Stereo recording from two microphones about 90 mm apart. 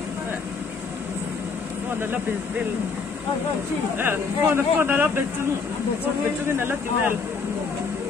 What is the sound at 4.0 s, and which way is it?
Speech, 25° right (ahead or behind).